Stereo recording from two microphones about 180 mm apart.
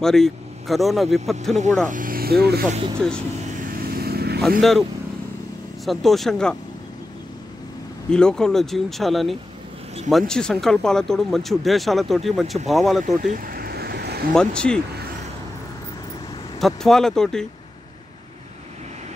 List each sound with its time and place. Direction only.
0.0 s speech: centre (ahead or behind)
1.9 s speech: 50° right (ahead or behind)
2.7 s speech: 30° right (ahead or behind)
3.9 s vehicle: 60° right (ahead or behind)
4.4 s speech: centre (ahead or behind)
5.9 s speech: centre (ahead or behind)
8.1 s speech: 5° left (ahead or behind)
13.0 s vehicle: 45° right (ahead or behind); by 14.2 s 65° right (ahead or behind)
14.3 s speech: 5° left (ahead or behind)
16.5 s speech: centre (ahead or behind)